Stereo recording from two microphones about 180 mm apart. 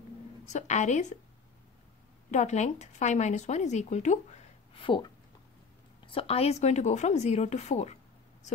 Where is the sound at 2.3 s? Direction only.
40° left (ahead or behind).